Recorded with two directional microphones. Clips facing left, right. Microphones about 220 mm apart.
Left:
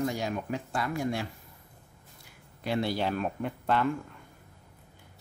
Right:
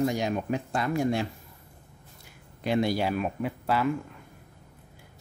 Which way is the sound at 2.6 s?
15° right (ahead or behind).